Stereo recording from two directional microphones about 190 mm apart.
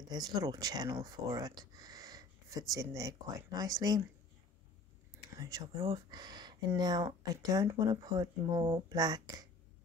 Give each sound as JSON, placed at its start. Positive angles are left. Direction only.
{"t": 0.1, "sound": "speech", "side_deg": -20}
{"t": 5.4, "sound": "speech", "side_deg": -25}